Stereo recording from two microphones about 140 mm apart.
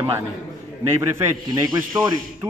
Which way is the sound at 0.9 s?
20° right (ahead or behind).